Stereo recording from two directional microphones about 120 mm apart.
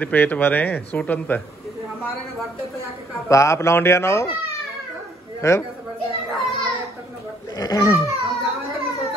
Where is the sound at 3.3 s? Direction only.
25° left (ahead or behind).